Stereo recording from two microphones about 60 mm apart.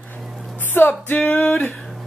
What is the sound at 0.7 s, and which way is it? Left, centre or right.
Music, left.